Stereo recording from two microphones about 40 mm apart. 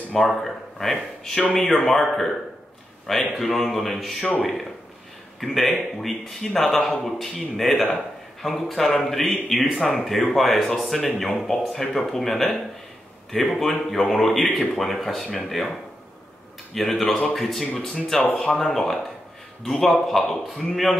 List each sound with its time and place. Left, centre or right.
0.1 s speech: centre
3.3 s speech: centre
17.8 s speech: centre
18.6 s speech: centre